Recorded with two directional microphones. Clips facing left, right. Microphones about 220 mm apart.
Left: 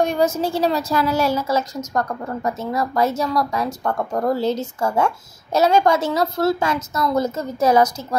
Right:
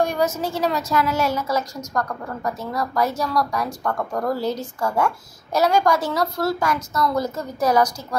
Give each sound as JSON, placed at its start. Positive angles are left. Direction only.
{"t": 0.0, "sound": "a woman's voice", "side_deg": 25}